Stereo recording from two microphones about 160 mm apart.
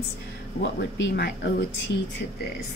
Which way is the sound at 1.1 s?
90° left.